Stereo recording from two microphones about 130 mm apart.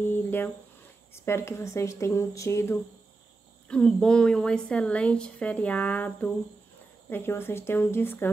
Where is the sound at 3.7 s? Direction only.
5° left (ahead or behind).